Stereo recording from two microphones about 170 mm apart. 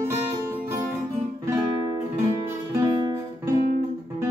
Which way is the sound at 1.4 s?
15° right (ahead or behind).